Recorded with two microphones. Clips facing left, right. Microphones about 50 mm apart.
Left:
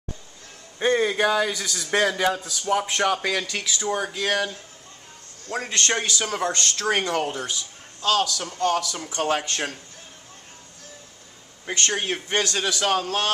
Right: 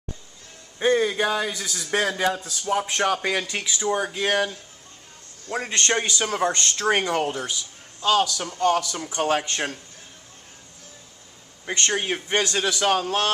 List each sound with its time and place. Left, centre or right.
0.7 s a man's voice: centre
1.3 s a man's voice: centre
2.7 s speech: centre
3.0 s a man's voice: centre
3.3 s speech: centre
3.8 s a man's voice: centre
5.7 s a man's voice: right; by 9.5 s centre
11.9 s a man's voice: centre